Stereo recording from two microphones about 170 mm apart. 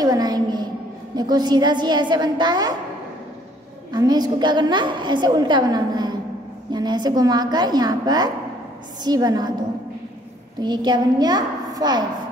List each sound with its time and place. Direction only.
0.0 s a sound: 25° right (ahead or behind)
1.1 s a woman's voice: 25° right (ahead or behind)
3.9 s a woman's voice: 25° right (ahead or behind)
10.6 s a woman's voice: 25° right (ahead or behind)